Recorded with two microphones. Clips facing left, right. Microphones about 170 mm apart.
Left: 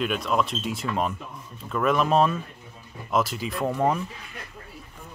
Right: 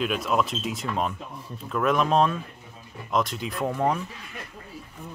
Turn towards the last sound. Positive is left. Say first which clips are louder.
# left 1 dB
turn(degrees=0)  # may be behind; listen again after turning